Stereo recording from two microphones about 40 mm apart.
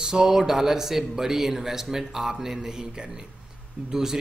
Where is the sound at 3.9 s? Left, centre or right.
Centre.